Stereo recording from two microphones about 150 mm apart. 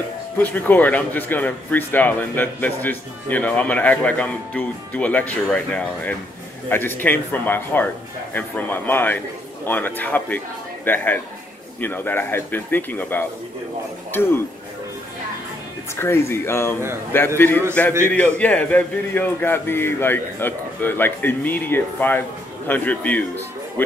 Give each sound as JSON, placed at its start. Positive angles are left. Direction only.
{"t": 0.4, "sound": "speech", "side_deg": 10}
{"t": 16.0, "sound": "speech", "side_deg": 15}